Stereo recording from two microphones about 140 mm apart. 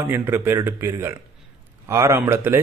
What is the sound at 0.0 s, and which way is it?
A man's voice, 15° right (ahead or behind).